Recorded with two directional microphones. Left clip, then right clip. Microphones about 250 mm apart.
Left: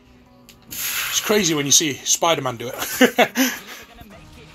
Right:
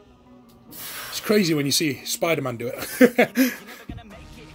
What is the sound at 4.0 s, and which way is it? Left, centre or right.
Music, centre.